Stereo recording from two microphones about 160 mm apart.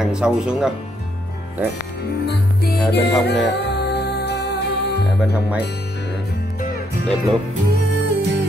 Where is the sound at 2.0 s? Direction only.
85° left; by 7.0 s 65° left (ahead or behind).